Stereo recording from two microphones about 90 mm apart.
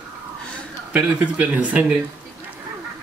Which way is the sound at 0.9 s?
15° right (ahead or behind).